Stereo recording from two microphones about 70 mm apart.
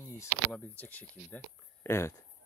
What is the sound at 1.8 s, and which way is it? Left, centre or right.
Speech, left.